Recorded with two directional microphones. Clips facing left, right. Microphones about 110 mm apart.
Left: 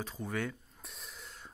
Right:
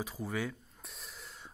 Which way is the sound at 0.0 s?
5° right (ahead or behind).